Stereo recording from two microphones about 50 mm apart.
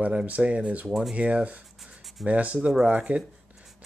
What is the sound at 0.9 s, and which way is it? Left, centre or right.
Speech, centre.